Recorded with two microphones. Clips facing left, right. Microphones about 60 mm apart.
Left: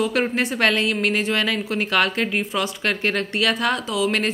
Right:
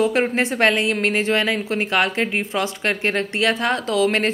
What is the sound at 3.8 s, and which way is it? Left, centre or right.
Speech, right.